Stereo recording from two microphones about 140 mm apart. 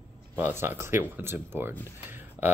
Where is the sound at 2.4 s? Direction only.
15° left (ahead or behind).